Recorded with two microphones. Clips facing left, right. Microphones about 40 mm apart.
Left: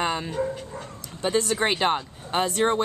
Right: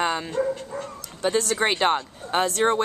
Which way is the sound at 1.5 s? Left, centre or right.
Centre.